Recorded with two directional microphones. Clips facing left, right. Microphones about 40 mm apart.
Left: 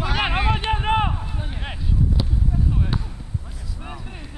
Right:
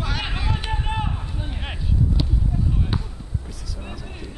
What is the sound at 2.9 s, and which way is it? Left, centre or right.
Basketball bounce, centre.